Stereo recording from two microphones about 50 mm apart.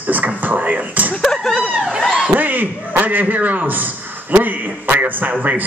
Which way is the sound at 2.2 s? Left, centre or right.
Right.